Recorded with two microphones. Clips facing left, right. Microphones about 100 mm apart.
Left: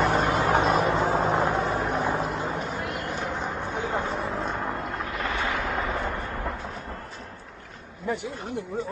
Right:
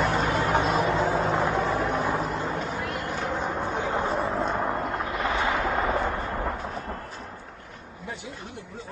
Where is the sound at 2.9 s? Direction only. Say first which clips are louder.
Right 1 dB; centre (ahead or behind); by 4.3 s 20° right (ahead or behind).